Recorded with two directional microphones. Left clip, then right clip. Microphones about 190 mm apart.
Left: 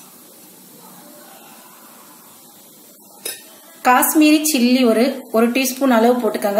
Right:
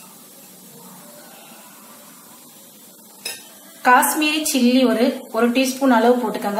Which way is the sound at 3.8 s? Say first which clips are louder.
Left 1 dB; 55° left (ahead or behind).